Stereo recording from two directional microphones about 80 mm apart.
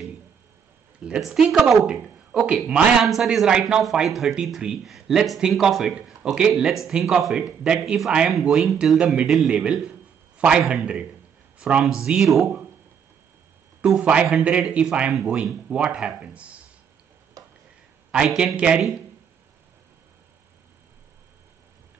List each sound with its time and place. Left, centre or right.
1.0 s speech: centre
1.9 s speech: centre
9.8 s a sound: centre
10.7 s speech: centre
11.5 s a sound: centre
11.8 s speech: centre
14.2 s speech: centre
17.4 s a sound: right
18.1 s speech: centre